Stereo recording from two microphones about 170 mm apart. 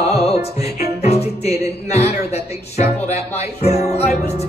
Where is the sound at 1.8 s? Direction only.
40° left (ahead or behind).